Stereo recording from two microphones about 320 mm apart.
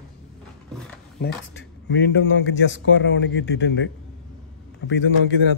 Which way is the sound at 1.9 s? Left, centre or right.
Left.